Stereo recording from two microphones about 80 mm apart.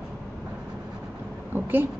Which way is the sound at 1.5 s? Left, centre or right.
Right.